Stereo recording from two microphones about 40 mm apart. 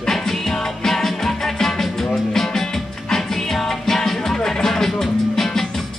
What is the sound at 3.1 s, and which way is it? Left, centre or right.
Music, centre.